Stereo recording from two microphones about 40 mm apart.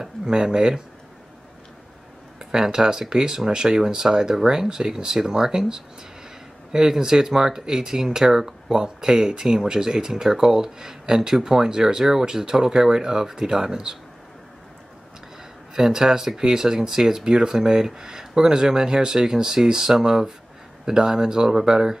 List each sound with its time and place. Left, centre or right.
0.0 s a sound: centre
0.6 s speech: centre
2.3 s speech: centre
15.7 s speech: centre